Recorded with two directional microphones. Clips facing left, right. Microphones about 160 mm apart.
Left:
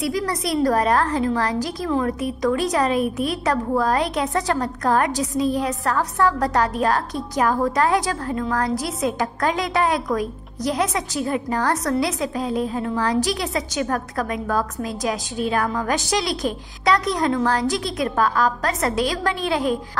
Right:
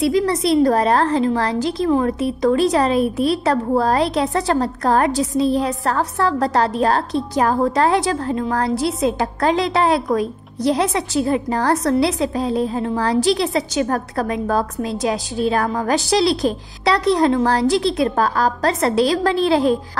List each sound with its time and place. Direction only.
0.0 s a woman's voice: 25° right (ahead or behind)